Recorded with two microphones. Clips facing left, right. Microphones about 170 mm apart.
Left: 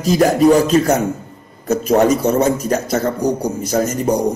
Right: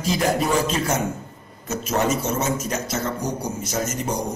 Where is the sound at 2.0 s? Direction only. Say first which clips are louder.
Left 9 dB; 35° left (ahead or behind).